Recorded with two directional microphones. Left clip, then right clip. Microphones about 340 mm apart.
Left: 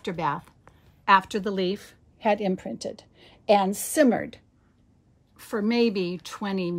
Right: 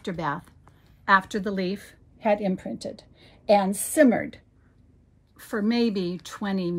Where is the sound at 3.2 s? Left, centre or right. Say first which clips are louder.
Left 1 dB; left.